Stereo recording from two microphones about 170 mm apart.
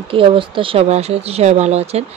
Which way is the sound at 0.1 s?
30° right (ahead or behind).